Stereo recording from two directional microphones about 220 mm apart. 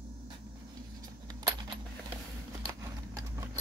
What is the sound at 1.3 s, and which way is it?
Coin, 20° right (ahead or behind).